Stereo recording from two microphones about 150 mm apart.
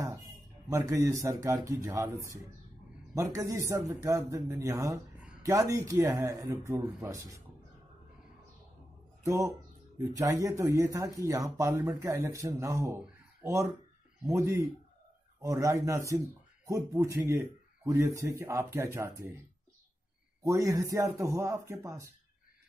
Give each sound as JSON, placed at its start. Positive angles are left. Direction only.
{"t": 0.0, "sound": "speech", "side_deg": -20}
{"t": 9.2, "sound": "speech", "side_deg": -20}
{"t": 20.4, "sound": "speech", "side_deg": -20}